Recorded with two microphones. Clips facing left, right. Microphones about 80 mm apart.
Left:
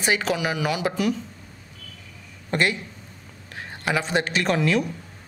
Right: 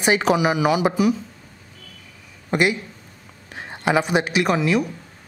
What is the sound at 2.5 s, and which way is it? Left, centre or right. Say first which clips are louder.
Speech: right 3 dB; centre.